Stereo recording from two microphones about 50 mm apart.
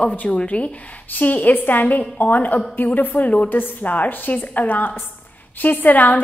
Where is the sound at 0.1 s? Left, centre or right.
Left.